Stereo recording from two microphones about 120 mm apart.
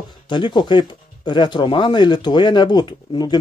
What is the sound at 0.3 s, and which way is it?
Speech, 40° left (ahead or behind).